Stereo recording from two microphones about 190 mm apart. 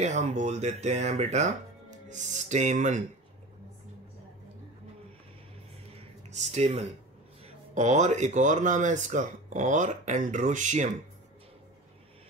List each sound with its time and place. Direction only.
0.0 s speech: 35° right (ahead or behind)
6.3 s speech: 40° right (ahead or behind)